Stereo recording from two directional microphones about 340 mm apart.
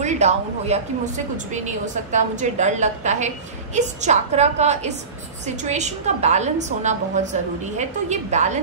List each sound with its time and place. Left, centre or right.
0.0 s a woman's voice: centre